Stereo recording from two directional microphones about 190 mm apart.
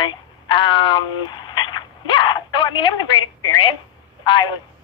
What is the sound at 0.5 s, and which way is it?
Dog, 25° left (ahead or behind).